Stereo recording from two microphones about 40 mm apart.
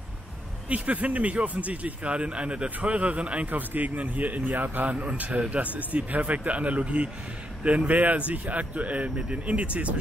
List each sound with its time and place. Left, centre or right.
0.7 s a man's voice: right
3.4 s speech: right
4.8 s a man's voice: right